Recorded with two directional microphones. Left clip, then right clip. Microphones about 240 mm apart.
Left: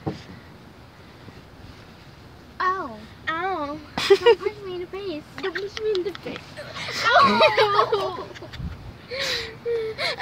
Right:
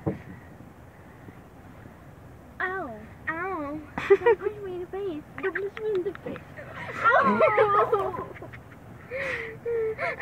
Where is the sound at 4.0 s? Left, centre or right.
Left.